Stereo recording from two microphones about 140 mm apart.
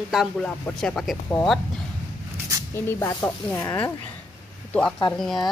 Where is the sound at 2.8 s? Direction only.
20° left (ahead or behind).